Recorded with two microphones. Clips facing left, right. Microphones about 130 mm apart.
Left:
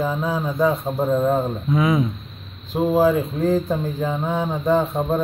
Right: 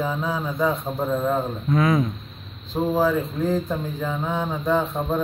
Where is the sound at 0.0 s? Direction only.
5° left (ahead or behind).